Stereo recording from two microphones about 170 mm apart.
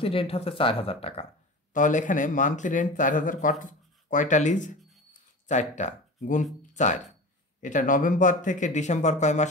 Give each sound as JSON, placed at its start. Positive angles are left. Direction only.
{"t": 0.0, "sound": "speech", "side_deg": 35}
{"t": 1.7, "sound": "speech", "side_deg": 50}